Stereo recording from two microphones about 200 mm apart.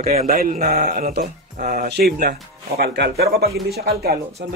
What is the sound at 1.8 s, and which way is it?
Speech, 55° right (ahead or behind).